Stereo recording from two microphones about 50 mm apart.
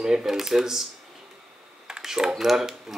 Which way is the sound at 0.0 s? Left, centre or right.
Centre.